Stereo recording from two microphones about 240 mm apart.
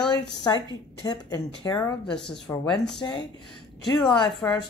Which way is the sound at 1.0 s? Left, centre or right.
Centre.